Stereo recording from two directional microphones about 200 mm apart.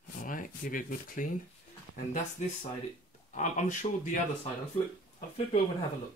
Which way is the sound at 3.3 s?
35° left (ahead or behind).